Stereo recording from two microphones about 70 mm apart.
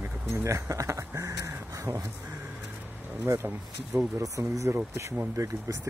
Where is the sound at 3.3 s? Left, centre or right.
Right.